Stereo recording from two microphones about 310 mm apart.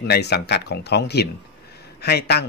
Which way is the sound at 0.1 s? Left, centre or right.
Left.